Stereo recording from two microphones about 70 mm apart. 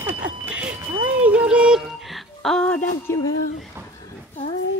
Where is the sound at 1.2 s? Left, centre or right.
Centre.